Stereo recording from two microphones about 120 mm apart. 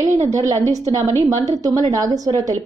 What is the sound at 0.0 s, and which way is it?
A woman's voice, 25° right (ahead or behind).